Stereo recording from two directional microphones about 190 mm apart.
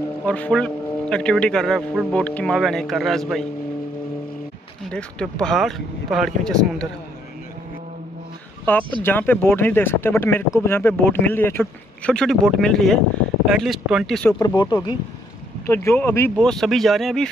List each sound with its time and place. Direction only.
0.2 s a man's voice: 5° left (ahead or behind)
4.9 s a man's voice: 5° left (ahead or behind)
8.7 s a man's voice: 10° left (ahead or behind)
14.4 s a man's voice: 20° left (ahead or behind); by 17.3 s centre (ahead or behind)